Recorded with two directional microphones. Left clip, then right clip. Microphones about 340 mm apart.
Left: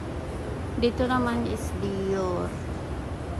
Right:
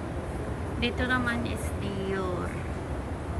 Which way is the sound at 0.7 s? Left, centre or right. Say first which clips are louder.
Left 4 dB; centre.